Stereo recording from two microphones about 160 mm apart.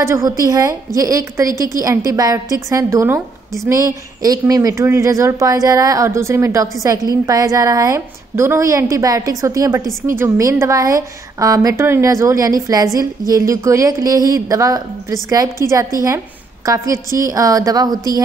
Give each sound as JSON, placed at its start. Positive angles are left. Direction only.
{"t": 0.0, "sound": "a woman's voice", "side_deg": -20}